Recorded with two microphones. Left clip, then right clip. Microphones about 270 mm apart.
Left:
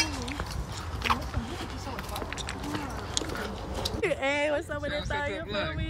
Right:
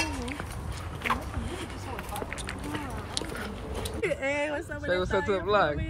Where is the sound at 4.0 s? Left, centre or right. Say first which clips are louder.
Left 1 dB; centre.